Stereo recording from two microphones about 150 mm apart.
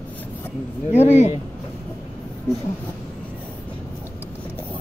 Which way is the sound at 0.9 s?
50° left (ahead or behind).